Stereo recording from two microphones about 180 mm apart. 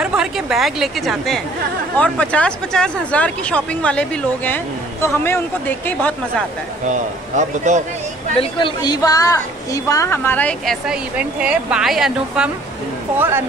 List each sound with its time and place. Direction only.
0.0 s a woman's voice: 5° right (ahead or behind)
7.3 s a man's voice: 40° right (ahead or behind)
8.4 s a woman's voice: 25° left (ahead or behind); by 12.4 s centre (ahead or behind)